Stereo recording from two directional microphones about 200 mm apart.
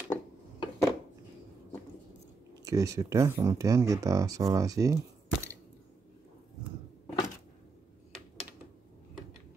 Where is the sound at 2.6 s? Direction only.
15° right (ahead or behind).